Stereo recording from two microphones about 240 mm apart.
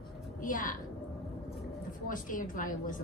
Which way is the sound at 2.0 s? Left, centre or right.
Left.